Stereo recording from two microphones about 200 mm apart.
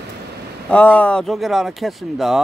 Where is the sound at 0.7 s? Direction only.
5° left (ahead or behind).